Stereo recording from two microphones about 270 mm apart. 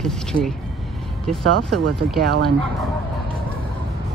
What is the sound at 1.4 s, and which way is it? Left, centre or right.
Speech, right.